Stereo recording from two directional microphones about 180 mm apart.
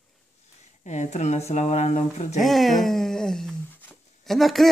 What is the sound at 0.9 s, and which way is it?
A woman's voice, 40° left (ahead or behind).